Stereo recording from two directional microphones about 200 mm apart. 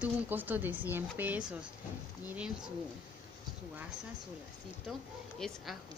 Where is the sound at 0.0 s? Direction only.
10° right (ahead or behind).